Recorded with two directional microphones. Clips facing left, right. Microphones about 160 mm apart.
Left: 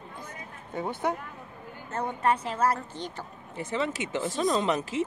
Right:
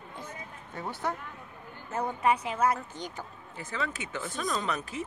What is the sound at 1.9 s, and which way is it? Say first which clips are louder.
Speech: even; 5° right (ahead or behind).